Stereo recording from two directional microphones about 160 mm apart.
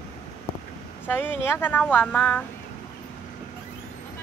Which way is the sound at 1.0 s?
15° left (ahead or behind).